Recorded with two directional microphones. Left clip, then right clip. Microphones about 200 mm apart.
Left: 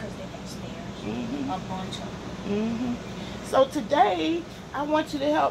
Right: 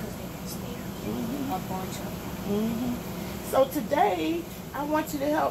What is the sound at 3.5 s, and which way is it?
Speech, 5° right (ahead or behind).